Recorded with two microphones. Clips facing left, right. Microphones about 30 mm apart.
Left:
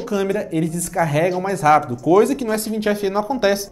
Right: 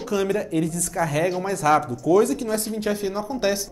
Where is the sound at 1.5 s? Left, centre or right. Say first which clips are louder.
Left 5 dB; centre.